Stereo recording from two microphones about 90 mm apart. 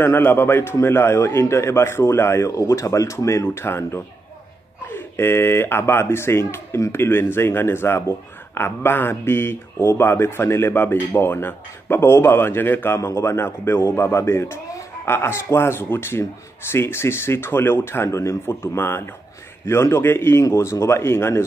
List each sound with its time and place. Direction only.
0.0 s speech: 25° left (ahead or behind)